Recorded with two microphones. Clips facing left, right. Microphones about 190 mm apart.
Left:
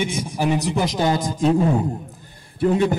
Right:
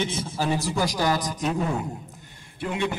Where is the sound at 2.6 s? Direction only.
40° left (ahead or behind).